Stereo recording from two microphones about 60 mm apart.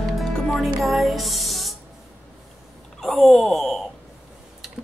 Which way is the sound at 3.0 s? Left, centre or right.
Centre.